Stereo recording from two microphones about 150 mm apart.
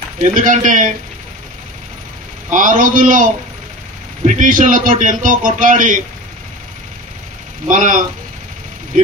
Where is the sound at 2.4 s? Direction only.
60° right (ahead or behind).